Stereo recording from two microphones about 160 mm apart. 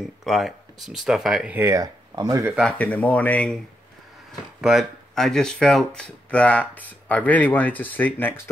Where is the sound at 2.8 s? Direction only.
10° left (ahead or behind).